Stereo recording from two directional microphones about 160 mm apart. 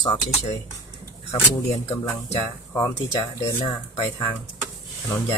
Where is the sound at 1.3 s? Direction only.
20° left (ahead or behind).